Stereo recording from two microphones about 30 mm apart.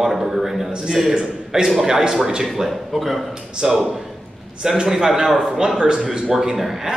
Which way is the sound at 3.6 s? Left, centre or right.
Centre.